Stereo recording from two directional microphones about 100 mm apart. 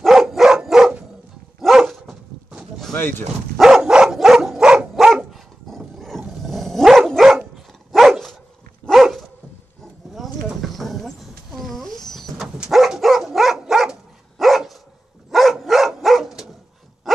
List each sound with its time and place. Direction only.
0.0 s dog: centre (ahead or behind)
3.0 s speech: 20° left (ahead or behind)
3.5 s dog: 5° right (ahead or behind)
10.1 s a sound: centre (ahead or behind)
12.5 s dog: 5° right (ahead or behind)